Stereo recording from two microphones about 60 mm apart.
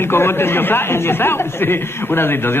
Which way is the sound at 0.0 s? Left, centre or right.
Left.